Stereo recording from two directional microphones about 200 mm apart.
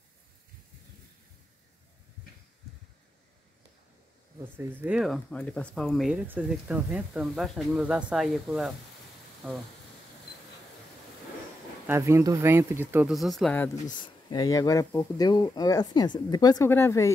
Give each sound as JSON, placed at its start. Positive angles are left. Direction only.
{"t": 4.6, "sound": "speech", "side_deg": -5}
{"t": 11.9, "sound": "speech", "side_deg": -15}
{"t": 13.9, "sound": "speech", "side_deg": 20}